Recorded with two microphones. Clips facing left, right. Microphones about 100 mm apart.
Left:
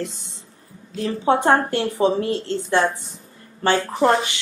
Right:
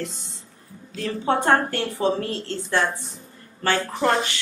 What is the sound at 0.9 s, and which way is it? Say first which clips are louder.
Speech: left 4 dB; 20° left (ahead or behind).